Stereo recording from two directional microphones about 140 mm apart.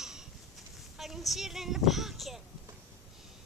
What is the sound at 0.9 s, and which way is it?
Speech, centre (ahead or behind).